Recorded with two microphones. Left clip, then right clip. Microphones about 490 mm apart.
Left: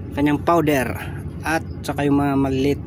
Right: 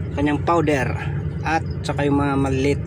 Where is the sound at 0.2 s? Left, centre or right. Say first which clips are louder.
Left 2 dB; left.